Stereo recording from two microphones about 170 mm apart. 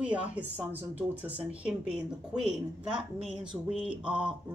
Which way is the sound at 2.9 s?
30° right (ahead or behind).